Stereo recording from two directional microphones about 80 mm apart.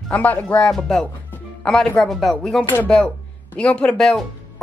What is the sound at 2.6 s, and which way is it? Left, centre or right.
Speech, left.